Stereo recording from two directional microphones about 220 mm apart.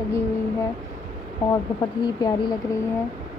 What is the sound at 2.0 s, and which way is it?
Speech, 15° left (ahead or behind).